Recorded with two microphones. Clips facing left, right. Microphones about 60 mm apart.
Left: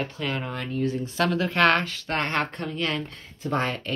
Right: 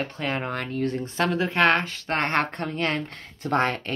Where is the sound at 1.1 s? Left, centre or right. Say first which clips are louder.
Even; right.